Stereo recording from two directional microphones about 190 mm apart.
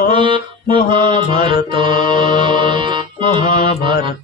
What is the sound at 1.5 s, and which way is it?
Music, 25° right (ahead or behind).